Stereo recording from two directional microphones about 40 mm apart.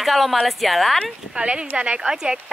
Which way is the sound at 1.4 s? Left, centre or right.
Right.